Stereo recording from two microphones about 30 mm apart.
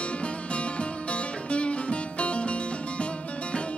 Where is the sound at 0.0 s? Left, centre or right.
Left.